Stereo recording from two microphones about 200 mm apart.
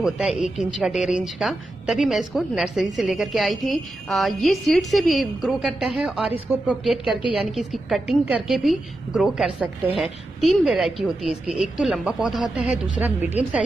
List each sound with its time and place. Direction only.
0.0 s a woman's voice: centre (ahead or behind)